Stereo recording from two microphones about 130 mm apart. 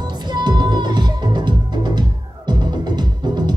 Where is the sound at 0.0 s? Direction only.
35° right (ahead or behind).